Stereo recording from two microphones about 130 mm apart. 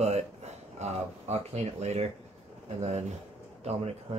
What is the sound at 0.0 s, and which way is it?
Speech, 55° right (ahead or behind).